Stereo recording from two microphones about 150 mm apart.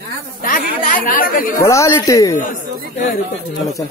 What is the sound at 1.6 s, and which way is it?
Speech, 20° left (ahead or behind).